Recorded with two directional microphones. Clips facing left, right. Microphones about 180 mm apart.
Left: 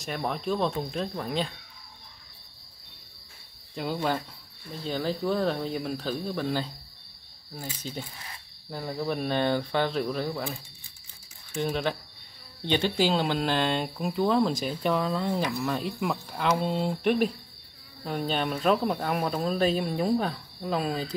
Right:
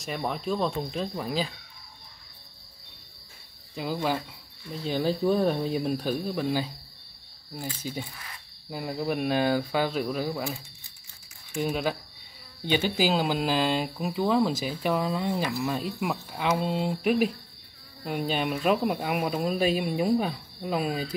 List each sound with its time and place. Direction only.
0.0 s speech: centre (ahead or behind)
3.7 s speech: centre (ahead or behind)
4.8 s speech: 20° right (ahead or behind)
7.8 s speech: 10° right (ahead or behind)
8.6 s cricket: 10° right (ahead or behind)
8.9 s speech: 10° right (ahead or behind)
11.5 s speech: 5° right (ahead or behind)